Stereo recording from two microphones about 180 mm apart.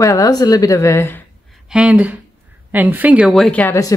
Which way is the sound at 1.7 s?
5° right (ahead or behind).